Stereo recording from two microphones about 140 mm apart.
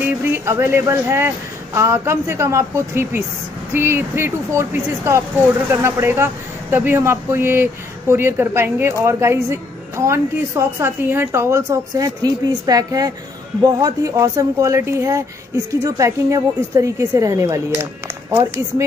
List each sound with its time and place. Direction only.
0.0 s a man's voice: 15° right (ahead or behind)